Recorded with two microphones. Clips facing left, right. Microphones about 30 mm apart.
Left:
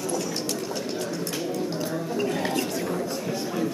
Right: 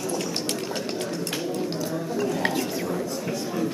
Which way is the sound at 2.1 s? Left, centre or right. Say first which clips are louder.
Even; left.